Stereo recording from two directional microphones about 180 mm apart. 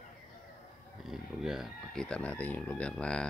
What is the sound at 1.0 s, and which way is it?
Speech, centre (ahead or behind).